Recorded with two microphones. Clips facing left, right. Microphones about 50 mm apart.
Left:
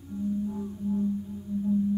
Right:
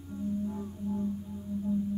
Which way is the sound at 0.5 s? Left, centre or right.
Centre.